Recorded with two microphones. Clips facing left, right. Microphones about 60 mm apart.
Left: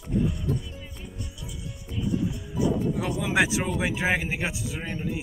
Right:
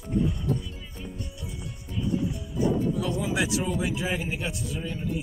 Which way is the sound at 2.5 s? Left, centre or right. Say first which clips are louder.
Even; right.